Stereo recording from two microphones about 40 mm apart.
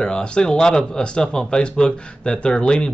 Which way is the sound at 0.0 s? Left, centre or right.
Left.